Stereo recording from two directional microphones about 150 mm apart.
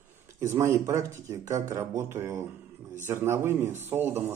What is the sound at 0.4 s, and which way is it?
Speech, 20° right (ahead or behind).